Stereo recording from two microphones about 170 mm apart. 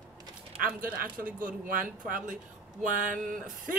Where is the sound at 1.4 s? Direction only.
55° right (ahead or behind).